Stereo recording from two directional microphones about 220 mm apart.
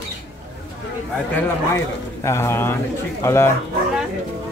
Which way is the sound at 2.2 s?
10° left (ahead or behind).